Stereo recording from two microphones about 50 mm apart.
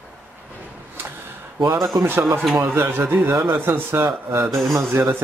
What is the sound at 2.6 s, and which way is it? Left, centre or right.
Speech, right.